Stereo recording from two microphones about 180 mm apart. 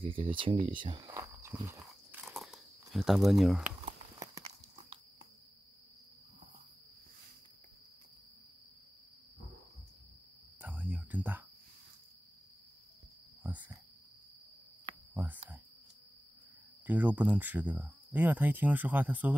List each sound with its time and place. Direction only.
0.0 s speech: 30° right (ahead or behind); by 1.8 s 10° right (ahead or behind)
2.2 s a sound: centre (ahead or behind)
3.8 s a sound: 20° right (ahead or behind)
10.6 s cricket: 5° right (ahead or behind)
15.1 s cricket: 5° right (ahead or behind)
16.8 s speech: 10° right (ahead or behind)